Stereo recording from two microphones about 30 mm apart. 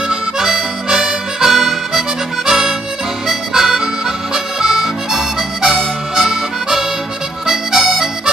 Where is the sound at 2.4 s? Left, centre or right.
Centre.